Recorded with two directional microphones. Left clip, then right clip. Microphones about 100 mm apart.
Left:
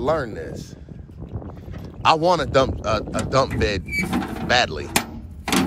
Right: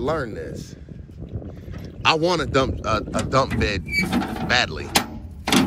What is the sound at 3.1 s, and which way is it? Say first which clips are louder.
Speech: even; 15° left (ahead or behind).